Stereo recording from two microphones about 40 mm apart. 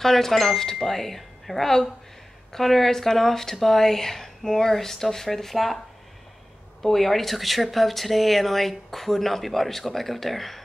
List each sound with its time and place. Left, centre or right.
0.0 s speech: centre
6.8 s speech: centre